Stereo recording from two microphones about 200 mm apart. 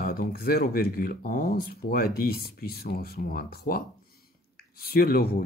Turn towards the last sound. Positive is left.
turn(degrees=50)  # may be behind; listen again after turning